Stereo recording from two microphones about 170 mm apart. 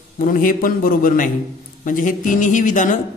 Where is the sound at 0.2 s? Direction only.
50° left (ahead or behind).